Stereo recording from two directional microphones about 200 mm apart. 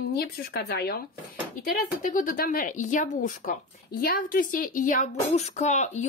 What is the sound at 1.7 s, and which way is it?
Speech, 40° left (ahead or behind).